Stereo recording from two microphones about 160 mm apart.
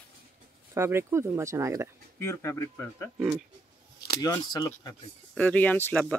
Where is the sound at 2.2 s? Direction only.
15° left (ahead or behind).